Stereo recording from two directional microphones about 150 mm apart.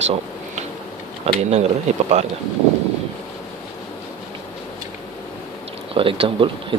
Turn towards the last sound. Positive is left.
turn(degrees=-35)  # may be behind; listen again after turning